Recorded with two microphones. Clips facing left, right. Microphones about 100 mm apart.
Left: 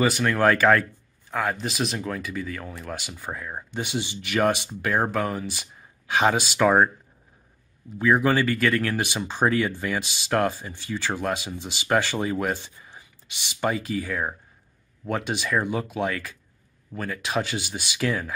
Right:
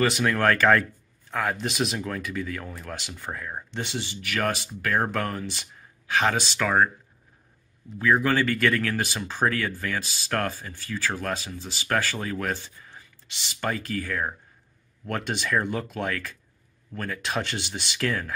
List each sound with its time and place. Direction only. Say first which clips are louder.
0.0 s speech: left 2 dB; centre (ahead or behind)
6.6 s speech: left 4 dB; 20° left (ahead or behind)
8.0 s speech: left 2 dB; 15° left (ahead or behind)